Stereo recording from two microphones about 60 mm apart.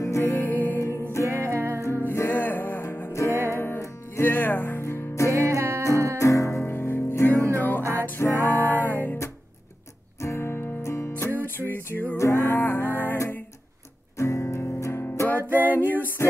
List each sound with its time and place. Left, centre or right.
0.2 s music: left
0.7 s music: left
1.4 s music: right
1.8 s music: left
3.1 s music: left
3.4 s music: left
4.8 s music: left
5.5 s music: right
6.1 s music: left
6.6 s music: left
10.2 s music: left
11.2 s music: left
12.2 s music: left
14.1 s music: left